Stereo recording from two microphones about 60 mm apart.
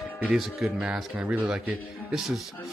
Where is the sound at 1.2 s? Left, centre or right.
Right.